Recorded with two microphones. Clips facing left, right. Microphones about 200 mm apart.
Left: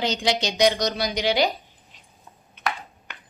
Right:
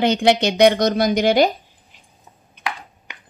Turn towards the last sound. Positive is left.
turn(degrees=-15)  # may be behind; listen again after turning